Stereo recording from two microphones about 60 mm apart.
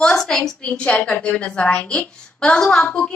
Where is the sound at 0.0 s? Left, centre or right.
Centre.